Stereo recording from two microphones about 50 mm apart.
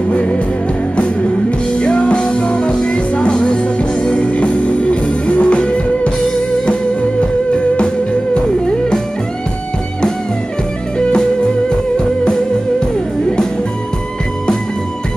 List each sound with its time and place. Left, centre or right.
0.1 s music: left
1.8 s music: left
7.5 s music: centre
11.0 s music: centre